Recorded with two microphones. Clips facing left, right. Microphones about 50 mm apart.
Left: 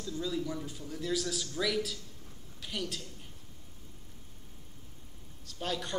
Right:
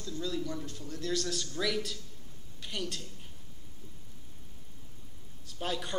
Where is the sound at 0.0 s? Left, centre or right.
Centre.